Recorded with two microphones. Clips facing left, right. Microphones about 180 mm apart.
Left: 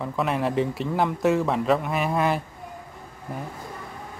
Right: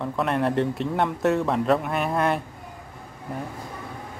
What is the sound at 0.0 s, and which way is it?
Speech, centre (ahead or behind).